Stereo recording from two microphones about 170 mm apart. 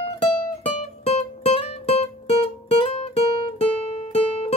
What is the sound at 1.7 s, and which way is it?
Music, 35° left (ahead or behind).